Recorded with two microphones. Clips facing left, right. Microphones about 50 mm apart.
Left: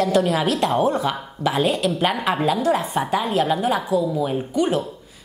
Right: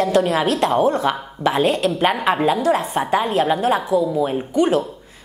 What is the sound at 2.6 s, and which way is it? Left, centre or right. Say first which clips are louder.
A woman's voice: right 2 dB; right.